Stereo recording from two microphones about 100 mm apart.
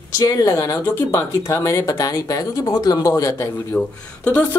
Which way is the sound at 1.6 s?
35° left (ahead or behind).